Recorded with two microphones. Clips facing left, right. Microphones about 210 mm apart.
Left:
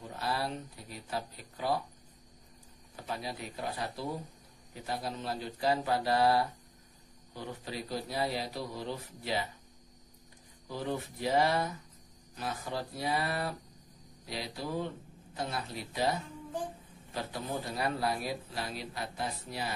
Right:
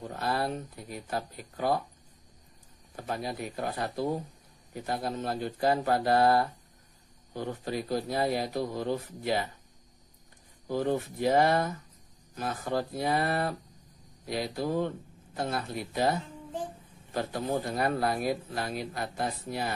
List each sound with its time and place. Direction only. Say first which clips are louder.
0.1 s a man's voice: right 4 dB; 55° right (ahead or behind)
3.1 s a man's voice: right 5 dB; 50° right (ahead or behind)
10.7 s a man's voice: right 7 dB; 50° right (ahead or behind)